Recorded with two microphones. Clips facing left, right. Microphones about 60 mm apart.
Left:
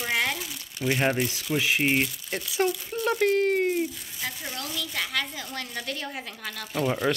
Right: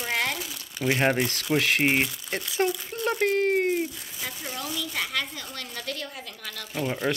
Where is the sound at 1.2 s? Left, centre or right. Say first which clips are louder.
Right 2 dB; right.